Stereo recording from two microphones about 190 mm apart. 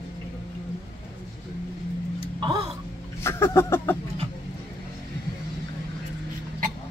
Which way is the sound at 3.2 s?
15° left (ahead or behind).